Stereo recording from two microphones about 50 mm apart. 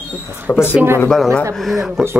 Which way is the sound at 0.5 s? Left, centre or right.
Left.